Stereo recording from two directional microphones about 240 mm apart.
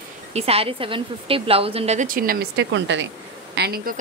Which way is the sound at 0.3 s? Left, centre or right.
Right.